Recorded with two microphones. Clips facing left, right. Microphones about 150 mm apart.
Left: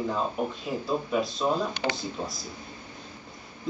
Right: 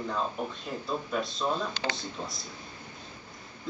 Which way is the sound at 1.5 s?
15° left (ahead or behind).